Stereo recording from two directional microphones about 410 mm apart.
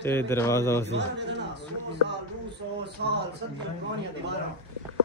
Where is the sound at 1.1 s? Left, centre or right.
Right.